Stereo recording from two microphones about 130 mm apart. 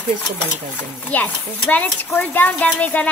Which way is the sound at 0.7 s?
10° left (ahead or behind).